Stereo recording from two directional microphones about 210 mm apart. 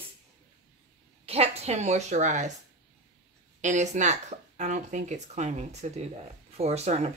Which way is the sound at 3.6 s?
35° right (ahead or behind).